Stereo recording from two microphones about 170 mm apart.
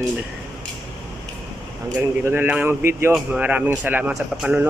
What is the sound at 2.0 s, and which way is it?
Speech, 10° right (ahead or behind).